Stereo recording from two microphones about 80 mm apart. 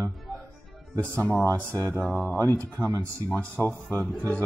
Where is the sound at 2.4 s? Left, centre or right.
Left.